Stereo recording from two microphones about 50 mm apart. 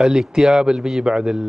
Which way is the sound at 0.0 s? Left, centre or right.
Centre.